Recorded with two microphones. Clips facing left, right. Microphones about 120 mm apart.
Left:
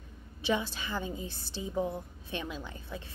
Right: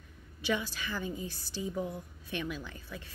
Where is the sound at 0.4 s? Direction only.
25° left (ahead or behind).